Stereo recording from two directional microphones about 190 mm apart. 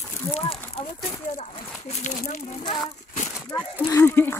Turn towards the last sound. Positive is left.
turn(degrees=10)  # may be behind; listen again after turning